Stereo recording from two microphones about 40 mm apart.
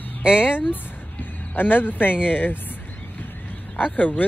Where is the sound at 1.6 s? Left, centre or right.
Left.